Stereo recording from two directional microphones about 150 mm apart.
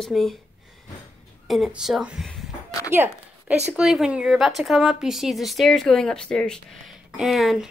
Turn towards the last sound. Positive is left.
turn(degrees=0)  # may be behind; listen again after turning